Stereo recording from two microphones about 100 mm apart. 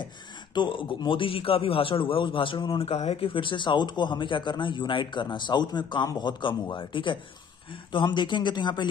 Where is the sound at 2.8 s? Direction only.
90° left.